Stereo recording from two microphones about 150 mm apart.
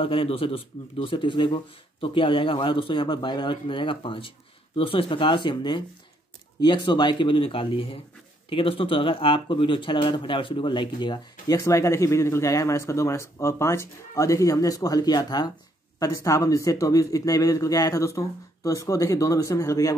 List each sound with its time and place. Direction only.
0.0 s a man's voice: 35° left (ahead or behind)
11.5 s speech: 20° left (ahead or behind)